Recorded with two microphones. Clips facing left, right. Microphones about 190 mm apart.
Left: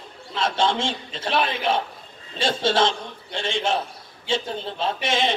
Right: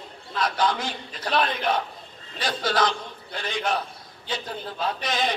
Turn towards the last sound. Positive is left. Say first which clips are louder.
# left 3 dB
turn(degrees=25)  # may be behind; listen again after turning